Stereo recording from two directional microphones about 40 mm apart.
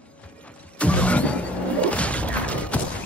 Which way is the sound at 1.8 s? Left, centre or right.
Left.